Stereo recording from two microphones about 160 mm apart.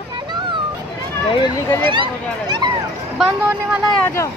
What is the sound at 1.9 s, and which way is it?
Speech, 30° right (ahead or behind).